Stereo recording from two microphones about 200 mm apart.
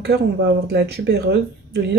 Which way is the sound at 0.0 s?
55° right (ahead or behind).